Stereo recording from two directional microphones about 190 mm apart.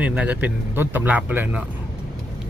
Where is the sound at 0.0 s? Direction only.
5° right (ahead or behind).